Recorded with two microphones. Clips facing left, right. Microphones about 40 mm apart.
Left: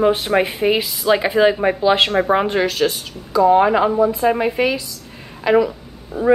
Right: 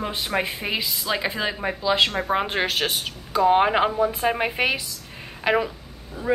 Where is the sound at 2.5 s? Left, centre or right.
Right.